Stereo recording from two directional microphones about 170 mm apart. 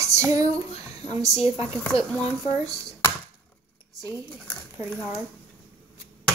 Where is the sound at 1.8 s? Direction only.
10° left (ahead or behind).